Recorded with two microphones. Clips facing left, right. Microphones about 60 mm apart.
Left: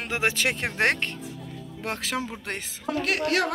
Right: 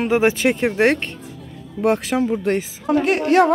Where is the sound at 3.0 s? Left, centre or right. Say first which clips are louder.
Right 9 dB; right.